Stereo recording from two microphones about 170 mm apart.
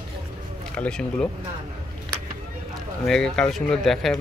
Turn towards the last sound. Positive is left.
turn(degrees=0)  # may be behind; listen again after turning